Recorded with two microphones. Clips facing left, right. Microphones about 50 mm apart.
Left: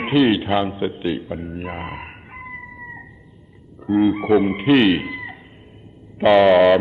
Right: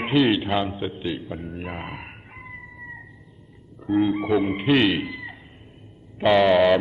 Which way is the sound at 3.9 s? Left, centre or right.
Centre.